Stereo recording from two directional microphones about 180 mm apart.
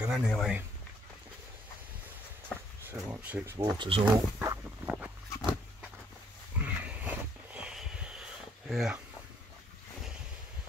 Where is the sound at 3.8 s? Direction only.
30° right (ahead or behind).